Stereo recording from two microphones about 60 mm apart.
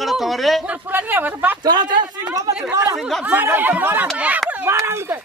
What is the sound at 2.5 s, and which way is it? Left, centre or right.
Speech, right.